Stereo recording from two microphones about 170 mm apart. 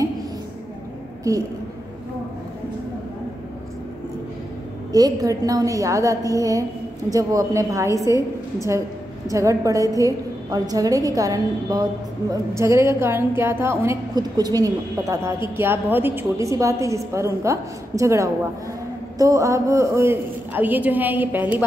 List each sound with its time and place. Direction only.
1.3 s a woman's voice: 20° right (ahead or behind)
4.9 s a woman's voice: 20° right (ahead or behind)
9.3 s a woman's voice: 20° right (ahead or behind)